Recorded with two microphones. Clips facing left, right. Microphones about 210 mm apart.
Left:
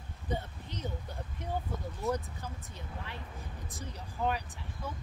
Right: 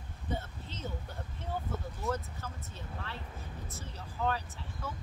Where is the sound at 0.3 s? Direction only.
15° left (ahead or behind).